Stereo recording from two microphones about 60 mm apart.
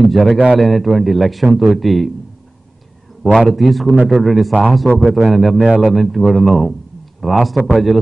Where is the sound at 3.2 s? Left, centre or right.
Centre.